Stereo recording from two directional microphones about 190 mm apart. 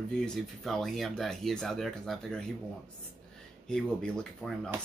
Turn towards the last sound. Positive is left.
turn(degrees=5)  # may be behind; listen again after turning